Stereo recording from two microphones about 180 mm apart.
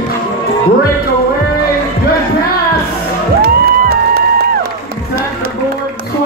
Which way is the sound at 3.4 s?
60° right (ahead or behind).